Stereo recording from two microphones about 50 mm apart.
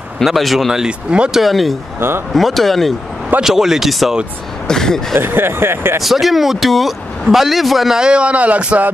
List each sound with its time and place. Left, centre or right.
0.2 s speech: centre
0.8 s speech: right
1.3 s speech: centre
2.0 s speech: right
2.3 s speech: centre
3.4 s speech: centre
4.6 s speech: centre
5.2 s speech: right
6.0 s speech: centre
8.0 s speech: right